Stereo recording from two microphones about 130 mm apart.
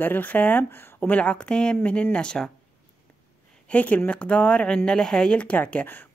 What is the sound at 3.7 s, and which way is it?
Speech, 10° left (ahead or behind).